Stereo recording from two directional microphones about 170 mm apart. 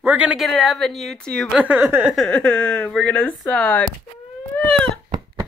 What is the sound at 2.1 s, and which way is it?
Speech, 5° left (ahead or behind).